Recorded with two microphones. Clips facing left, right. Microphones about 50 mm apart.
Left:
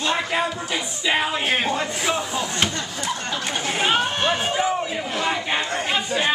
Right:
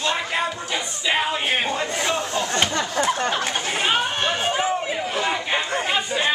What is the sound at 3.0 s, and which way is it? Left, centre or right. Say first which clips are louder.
Chatter: right 5 dB; right.